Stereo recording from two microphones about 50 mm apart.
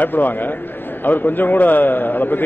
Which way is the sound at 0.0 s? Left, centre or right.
Left.